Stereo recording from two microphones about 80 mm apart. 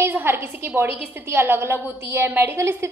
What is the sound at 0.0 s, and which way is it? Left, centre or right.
A woman's voice, right.